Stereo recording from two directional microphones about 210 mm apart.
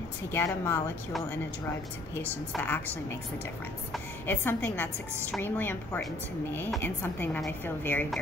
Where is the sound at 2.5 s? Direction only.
10° left (ahead or behind).